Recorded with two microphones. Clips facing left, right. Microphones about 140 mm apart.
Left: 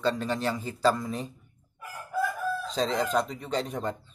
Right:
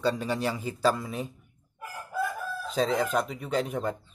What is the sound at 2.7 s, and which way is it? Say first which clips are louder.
Speech: right 2 dB; 10° right (ahead or behind).